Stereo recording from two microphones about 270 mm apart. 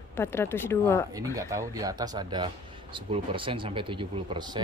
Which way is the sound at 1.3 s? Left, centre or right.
Centre.